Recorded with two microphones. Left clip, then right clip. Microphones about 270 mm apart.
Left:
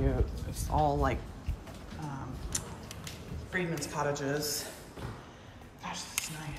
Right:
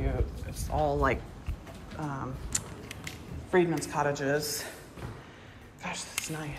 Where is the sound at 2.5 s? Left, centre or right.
Centre.